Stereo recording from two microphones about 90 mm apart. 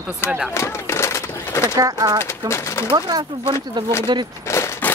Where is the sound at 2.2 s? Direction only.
30° left (ahead or behind).